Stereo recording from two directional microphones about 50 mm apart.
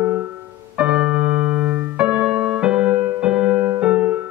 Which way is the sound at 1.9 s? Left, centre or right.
Right.